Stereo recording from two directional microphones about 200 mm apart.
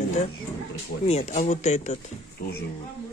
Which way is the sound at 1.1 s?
35° left (ahead or behind).